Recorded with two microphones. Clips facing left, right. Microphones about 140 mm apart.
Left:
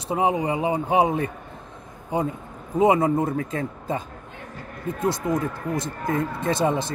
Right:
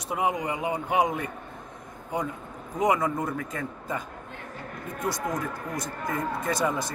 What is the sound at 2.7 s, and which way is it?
Speech, 25° left (ahead or behind).